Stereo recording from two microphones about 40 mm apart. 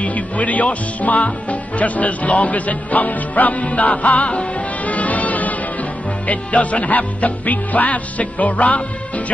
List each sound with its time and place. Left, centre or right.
0.0 s speech: left
3.6 s music: left
6.2 s speech: left